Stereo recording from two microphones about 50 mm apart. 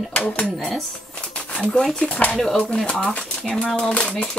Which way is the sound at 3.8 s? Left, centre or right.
Centre.